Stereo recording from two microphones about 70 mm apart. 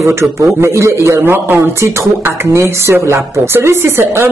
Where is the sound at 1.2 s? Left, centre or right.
Right.